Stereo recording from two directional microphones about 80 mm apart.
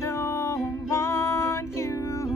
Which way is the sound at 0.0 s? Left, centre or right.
Left.